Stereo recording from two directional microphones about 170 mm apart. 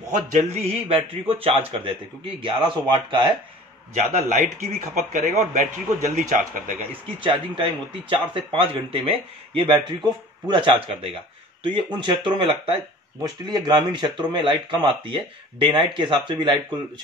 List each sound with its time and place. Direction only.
0.3 s speech: 40° right (ahead or behind)
3.9 s speech: 45° right (ahead or behind)
7.2 s speech: 30° right (ahead or behind)